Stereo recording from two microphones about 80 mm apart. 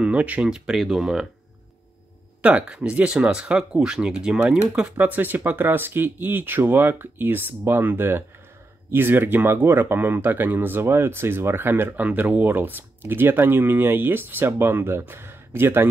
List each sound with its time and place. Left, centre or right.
0.0 s speech: centre
2.4 s speech: centre
4.9 s speech: right